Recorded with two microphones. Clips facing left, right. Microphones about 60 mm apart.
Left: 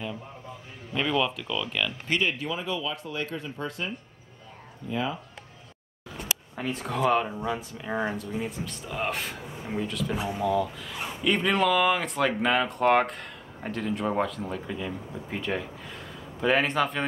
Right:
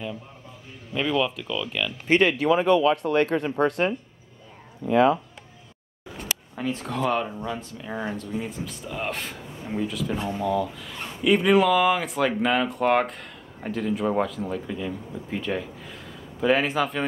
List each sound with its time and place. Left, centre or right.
0.9 s speech: centre
2.2 s speech: right
4.8 s speech: right
6.5 s speech: centre